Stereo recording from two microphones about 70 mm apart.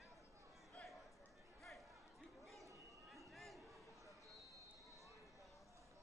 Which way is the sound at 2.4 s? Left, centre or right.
Centre.